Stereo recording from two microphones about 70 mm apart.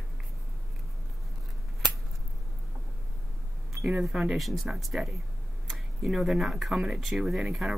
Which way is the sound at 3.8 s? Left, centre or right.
Centre.